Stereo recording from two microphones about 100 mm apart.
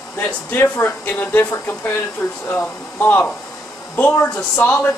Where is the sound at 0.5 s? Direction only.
20° left (ahead or behind).